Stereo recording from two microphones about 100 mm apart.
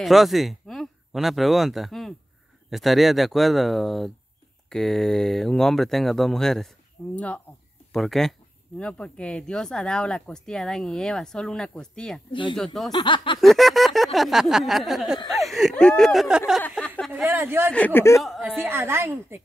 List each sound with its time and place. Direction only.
0.0 s speech: centre (ahead or behind)
12.3 s a sound: 55° left (ahead or behind)
12.5 s speech: 5° left (ahead or behind)
12.9 s a sound: 50° left (ahead or behind)
13.4 s speech: centre (ahead or behind)
17.3 s a woman's voice: 20° right (ahead or behind)
17.7 s speech: 15° left (ahead or behind)
18.6 s a woman's voice: 25° right (ahead or behind)